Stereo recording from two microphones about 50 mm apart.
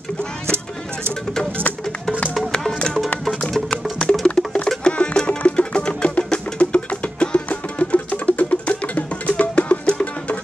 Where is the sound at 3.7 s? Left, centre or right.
Left.